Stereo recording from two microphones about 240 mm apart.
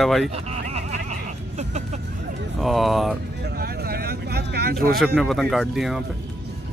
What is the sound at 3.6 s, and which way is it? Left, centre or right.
Vehicle, right.